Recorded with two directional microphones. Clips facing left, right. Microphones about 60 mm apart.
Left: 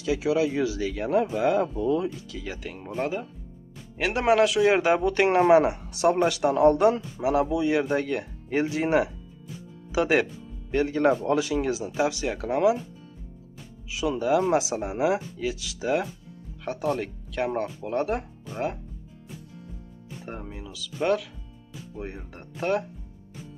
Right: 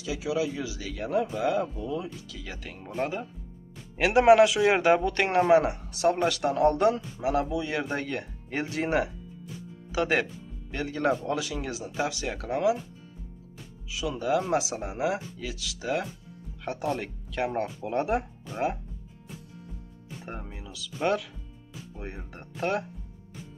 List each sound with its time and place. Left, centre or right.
0.0 s speech: left
1.8 s speech: left
2.5 s a man's voice: centre
5.5 s speech: left
7.9 s speech: centre
10.7 s speech: left
12.3 s speech: centre
13.8 s speech: left
16.6 s a man's voice: centre
20.2 s a man's voice: centre